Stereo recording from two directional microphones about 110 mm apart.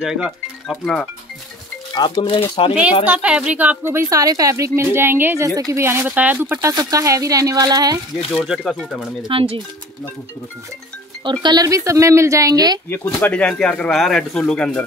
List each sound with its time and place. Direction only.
0.0 s speech: 5° right (ahead or behind)
2.0 s speech: 40° left (ahead or behind)
2.2 s speech: 55° left (ahead or behind)
3.1 s speech: 10° right (ahead or behind)
5.5 s a woman's voice: 35° right (ahead or behind)
5.8 s speech: 20° right (ahead or behind)
6.7 s a woman's voice: 35° right (ahead or behind)
8.5 s speech: centre (ahead or behind)
9.3 s speech: 55° right (ahead or behind)
11.4 s speech: 35° right (ahead or behind)
12.9 s speech: 15° left (ahead or behind)